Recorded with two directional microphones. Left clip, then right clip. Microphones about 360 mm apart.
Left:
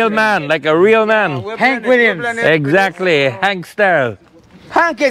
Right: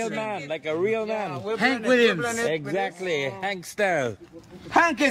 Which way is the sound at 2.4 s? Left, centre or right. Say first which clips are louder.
Left 14 dB; left.